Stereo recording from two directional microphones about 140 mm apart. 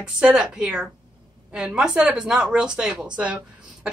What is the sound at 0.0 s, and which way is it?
A man's voice, 5° right (ahead or behind).